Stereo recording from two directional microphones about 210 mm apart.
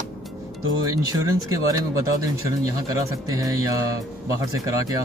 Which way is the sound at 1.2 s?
15° right (ahead or behind).